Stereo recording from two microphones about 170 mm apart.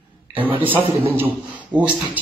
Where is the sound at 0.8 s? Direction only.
30° right (ahead or behind).